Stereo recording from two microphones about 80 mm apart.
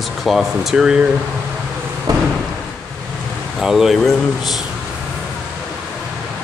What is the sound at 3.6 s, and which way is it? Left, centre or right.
Speech, centre.